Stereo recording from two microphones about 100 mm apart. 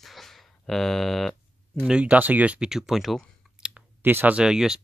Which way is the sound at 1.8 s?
10° right (ahead or behind).